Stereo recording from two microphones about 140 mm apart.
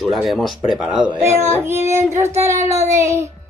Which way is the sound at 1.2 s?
20° right (ahead or behind).